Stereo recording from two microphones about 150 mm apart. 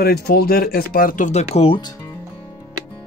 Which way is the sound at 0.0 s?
90° left.